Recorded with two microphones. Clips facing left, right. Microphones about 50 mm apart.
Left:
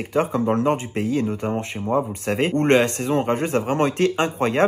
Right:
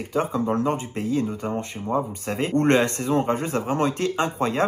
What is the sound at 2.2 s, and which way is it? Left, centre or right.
Speech, left.